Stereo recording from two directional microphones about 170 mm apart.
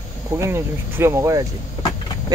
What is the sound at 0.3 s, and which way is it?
Speech, 15° right (ahead or behind).